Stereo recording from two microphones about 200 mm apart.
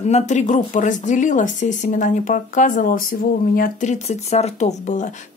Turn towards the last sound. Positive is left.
turn(degrees=40)  # may be behind; listen again after turning